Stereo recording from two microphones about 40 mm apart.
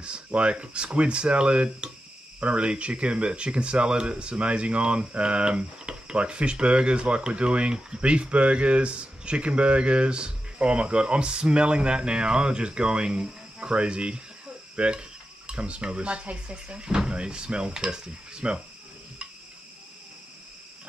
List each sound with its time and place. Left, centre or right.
0.0 s speech: right